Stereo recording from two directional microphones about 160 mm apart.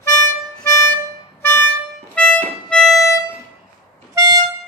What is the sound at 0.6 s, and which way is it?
Music, 15° left (ahead or behind).